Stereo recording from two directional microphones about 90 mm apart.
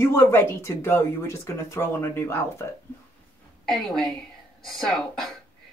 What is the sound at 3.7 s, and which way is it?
Speech, 5° left (ahead or behind).